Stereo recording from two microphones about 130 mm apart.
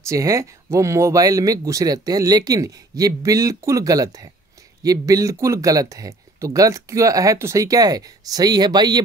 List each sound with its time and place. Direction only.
0.0 s speech: 25° right (ahead or behind)